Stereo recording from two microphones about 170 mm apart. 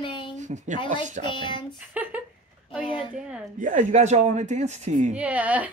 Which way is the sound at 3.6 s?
45° right (ahead or behind).